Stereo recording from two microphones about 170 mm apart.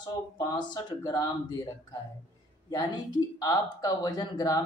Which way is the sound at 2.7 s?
25° left (ahead or behind).